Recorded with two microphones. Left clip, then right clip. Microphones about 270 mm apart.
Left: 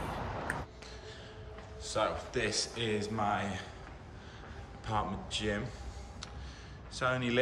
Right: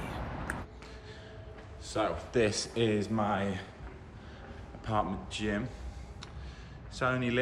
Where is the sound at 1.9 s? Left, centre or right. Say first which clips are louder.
Right 1 dB; centre.